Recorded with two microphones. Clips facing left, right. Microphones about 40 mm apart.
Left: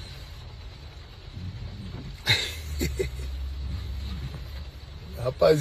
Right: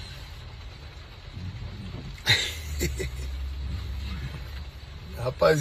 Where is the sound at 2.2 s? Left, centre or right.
Right.